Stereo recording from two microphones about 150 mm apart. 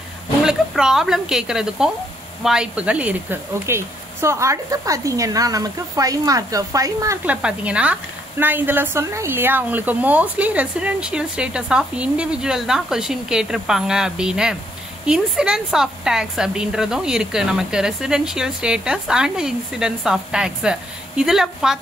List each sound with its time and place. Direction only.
0.5 s a woman's voice: 5° right (ahead or behind); by 7.2 s 20° right (ahead or behind)
7.2 s a woman's voice: 10° right (ahead or behind)